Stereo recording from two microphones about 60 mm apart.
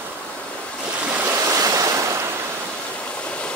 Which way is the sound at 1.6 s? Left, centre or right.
Right.